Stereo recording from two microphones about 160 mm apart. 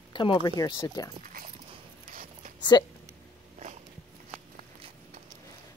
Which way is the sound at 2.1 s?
55° right (ahead or behind).